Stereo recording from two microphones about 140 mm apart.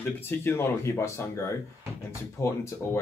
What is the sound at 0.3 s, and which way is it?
Speech, 15° left (ahead or behind).